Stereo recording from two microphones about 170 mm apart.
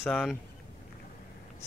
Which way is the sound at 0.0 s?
5° left (ahead or behind).